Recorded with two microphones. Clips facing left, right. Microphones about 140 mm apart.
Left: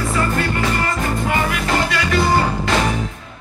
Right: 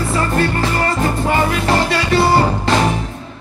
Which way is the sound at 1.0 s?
30° right (ahead or behind).